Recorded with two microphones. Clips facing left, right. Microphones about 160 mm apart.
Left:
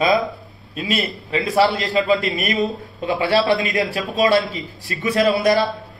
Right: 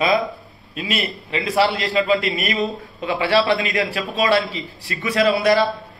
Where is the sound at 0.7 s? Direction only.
40° left (ahead or behind).